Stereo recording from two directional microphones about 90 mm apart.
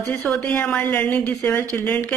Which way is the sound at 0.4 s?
15° left (ahead or behind).